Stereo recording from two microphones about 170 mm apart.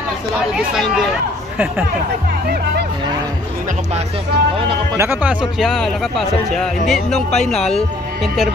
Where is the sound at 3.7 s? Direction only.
40° right (ahead or behind).